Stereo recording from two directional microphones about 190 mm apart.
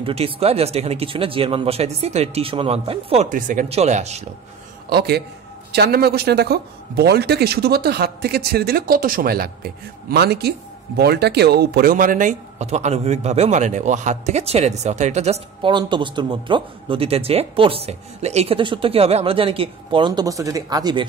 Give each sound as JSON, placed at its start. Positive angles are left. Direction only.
{"t": 0.0, "sound": "speech", "side_deg": -30}
{"t": 4.8, "sound": "a man's voice", "side_deg": -60}